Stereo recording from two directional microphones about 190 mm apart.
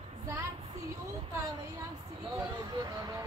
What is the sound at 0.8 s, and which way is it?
Speech, 15° right (ahead or behind).